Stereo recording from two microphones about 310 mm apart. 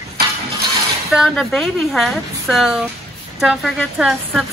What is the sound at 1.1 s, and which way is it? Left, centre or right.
Speech, centre.